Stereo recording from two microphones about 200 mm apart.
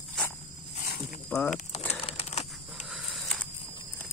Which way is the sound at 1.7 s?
30° left (ahead or behind).